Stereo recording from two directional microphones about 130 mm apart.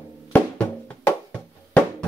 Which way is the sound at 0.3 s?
15° left (ahead or behind).